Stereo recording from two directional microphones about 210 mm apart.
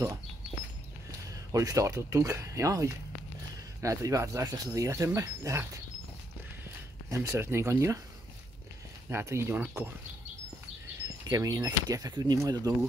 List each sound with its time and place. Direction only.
1.5 s speech: 15° right (ahead or behind)
7.1 s speech: 10° right (ahead or behind)
9.1 s speech: 15° right (ahead or behind)
11.2 s speech: 15° right (ahead or behind)